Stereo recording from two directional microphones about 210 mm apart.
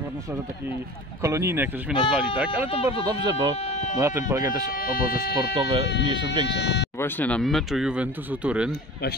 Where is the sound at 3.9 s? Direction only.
15° right (ahead or behind).